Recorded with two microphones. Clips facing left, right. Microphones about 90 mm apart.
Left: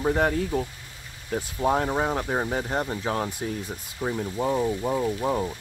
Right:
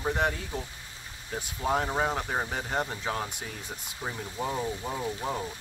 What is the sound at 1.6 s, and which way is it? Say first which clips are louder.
Speech: left 4 dB; 30° left (ahead or behind).